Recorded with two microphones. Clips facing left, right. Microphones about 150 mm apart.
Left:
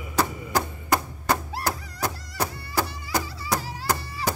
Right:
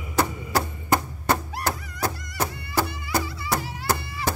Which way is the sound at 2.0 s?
10° right (ahead or behind).